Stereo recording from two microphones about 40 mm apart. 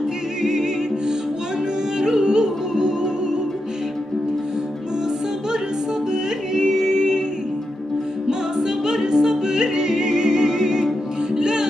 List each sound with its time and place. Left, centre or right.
0.4 s music: centre
6.1 s music: centre
8.3 s music: centre